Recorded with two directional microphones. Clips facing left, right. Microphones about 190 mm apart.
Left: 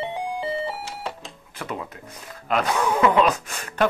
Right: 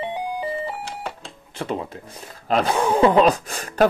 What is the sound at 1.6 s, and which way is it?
Speech, 30° right (ahead or behind).